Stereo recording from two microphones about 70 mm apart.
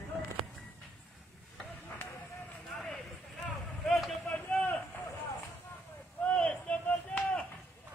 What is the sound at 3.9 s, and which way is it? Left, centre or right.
Vehicle, centre.